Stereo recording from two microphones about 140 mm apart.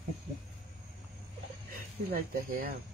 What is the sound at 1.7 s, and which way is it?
Speech, 90° right.